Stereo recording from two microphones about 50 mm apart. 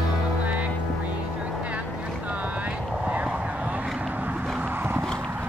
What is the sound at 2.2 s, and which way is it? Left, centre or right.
Boat, right.